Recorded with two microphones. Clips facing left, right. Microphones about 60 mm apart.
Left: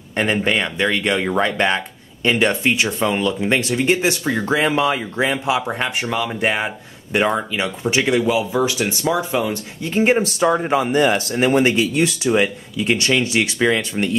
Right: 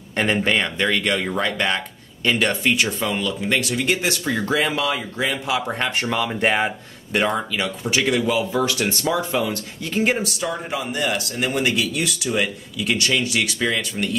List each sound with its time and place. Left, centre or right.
0.1 s speech: centre
5.7 s speech: centre
7.1 s speech: centre
10.2 s a man's voice: left